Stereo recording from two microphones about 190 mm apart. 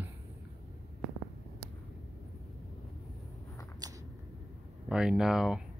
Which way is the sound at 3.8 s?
20° right (ahead or behind).